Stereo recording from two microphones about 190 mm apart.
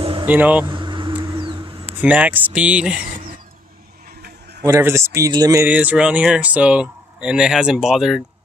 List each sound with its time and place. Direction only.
0.2 s speech: 10° right (ahead or behind)
0.7 s vehicle: 25° right (ahead or behind)
1.4 s a sound: 25° right (ahead or behind)
1.9 s speech: 10° right (ahead or behind)
4.6 s speech: 15° right (ahead or behind)